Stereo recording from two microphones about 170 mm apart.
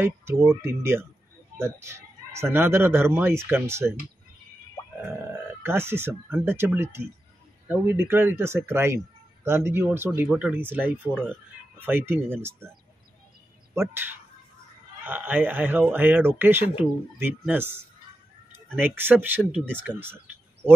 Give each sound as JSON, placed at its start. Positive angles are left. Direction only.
{"t": 0.0, "sound": "speech", "side_deg": -15}
{"t": 5.3, "sound": "speech", "side_deg": -15}
{"t": 15.0, "sound": "speech", "side_deg": -10}